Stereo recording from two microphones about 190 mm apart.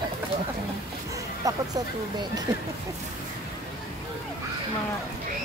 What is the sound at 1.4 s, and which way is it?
Speech, 20° right (ahead or behind).